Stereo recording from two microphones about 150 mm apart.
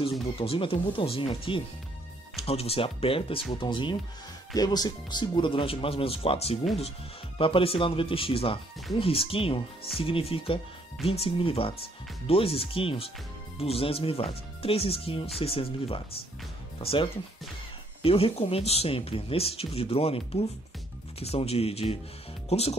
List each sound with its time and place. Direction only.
0.4 s speech: 40° left (ahead or behind)